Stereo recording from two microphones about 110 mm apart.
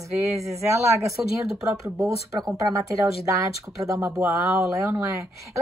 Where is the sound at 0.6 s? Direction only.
25° right (ahead or behind).